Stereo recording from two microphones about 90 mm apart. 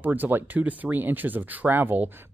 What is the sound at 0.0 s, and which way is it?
Speech, 20° right (ahead or behind).